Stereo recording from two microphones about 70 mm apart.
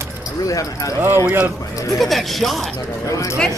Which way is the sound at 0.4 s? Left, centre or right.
Left.